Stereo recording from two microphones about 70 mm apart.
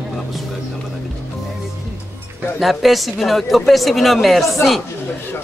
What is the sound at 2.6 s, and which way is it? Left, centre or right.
Speech, centre.